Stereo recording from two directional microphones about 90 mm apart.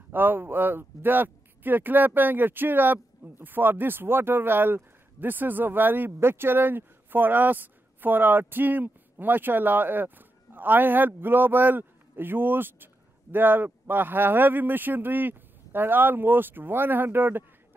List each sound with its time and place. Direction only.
0.1 s speech: 20° right (ahead or behind)